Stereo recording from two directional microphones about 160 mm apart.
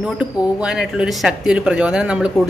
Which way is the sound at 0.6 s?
5° right (ahead or behind).